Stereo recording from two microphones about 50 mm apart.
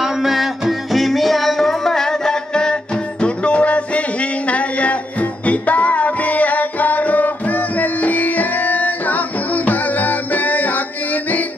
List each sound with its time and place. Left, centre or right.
0.0 s music: centre; by 10.8 s left